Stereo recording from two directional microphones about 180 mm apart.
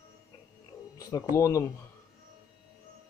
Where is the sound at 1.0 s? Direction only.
20° left (ahead or behind).